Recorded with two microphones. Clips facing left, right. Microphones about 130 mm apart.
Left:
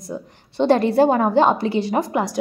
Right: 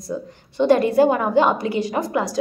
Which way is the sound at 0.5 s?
25° left (ahead or behind).